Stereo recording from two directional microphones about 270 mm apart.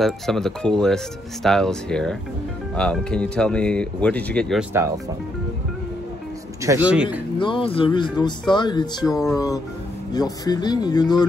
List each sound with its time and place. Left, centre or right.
0.0 s speech: centre
6.6 s speech: centre
7.3 s speech: centre